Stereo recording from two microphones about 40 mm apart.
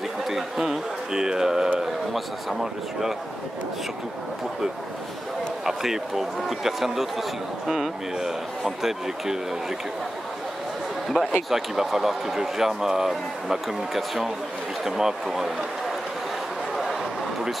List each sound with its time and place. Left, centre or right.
0.3 s speech: centre
5.7 s speech: centre
11.1 s speech: centre
11.5 s speech: centre